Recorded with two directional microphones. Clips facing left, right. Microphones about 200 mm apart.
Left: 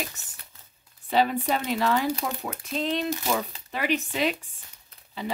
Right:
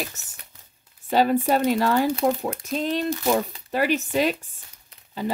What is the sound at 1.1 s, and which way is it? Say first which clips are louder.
Speech: right 4 dB; 40° right (ahead or behind).